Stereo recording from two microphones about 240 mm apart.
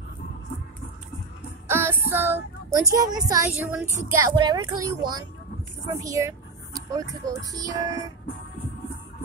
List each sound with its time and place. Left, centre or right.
1.7 s speech: centre